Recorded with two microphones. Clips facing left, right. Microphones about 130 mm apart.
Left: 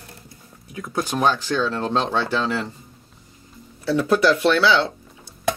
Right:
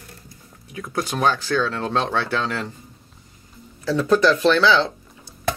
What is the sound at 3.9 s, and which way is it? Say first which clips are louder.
Speech: even; 10° left (ahead or behind).